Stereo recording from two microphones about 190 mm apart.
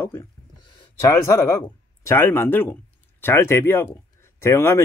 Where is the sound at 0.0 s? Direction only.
10° left (ahead or behind).